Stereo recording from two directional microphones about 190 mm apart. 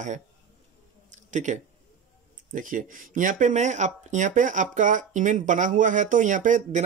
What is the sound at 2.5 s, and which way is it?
Speech, 45° right (ahead or behind).